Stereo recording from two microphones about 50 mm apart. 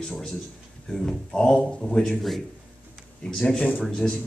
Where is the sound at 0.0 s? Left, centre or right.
Centre.